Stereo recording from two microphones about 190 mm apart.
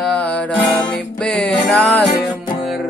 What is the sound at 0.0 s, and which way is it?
Music, 5° left (ahead or behind).